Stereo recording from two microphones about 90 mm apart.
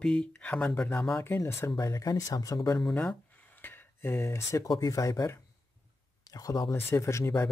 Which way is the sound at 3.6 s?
25° left (ahead or behind).